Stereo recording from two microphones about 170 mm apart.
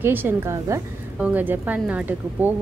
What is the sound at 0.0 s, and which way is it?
Speech, 10° right (ahead or behind).